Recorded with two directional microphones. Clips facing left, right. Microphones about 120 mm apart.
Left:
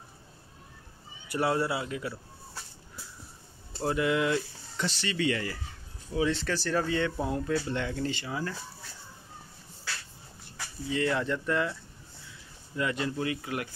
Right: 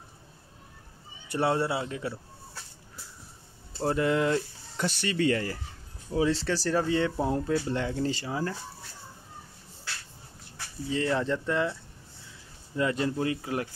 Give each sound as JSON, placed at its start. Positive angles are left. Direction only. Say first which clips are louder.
{"t": 1.3, "sound": "speech", "louder": "right 1 dB", "side_deg": -25}
{"t": 3.8, "sound": "speech", "louder": "right 2 dB", "side_deg": -35}
{"t": 10.9, "sound": "speech", "louder": "right 1 dB", "side_deg": -30}
{"t": 12.7, "sound": "speech", "louder": "right 3 dB", "side_deg": -35}